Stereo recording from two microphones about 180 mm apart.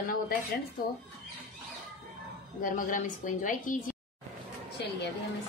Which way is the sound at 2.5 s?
45° left (ahead or behind).